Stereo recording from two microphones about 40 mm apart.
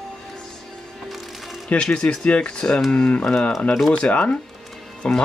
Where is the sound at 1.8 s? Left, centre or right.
Left.